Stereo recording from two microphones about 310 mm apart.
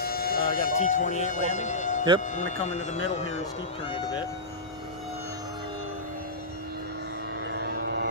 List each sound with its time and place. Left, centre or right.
0.0 s siren: left
1.5 s a man's voice: left
7.5 s vehicle: right